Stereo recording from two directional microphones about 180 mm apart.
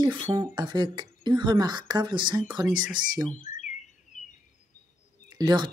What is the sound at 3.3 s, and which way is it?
Bird, 45° left (ahead or behind).